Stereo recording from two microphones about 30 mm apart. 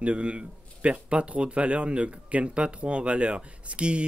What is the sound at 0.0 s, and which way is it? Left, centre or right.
Speech, right.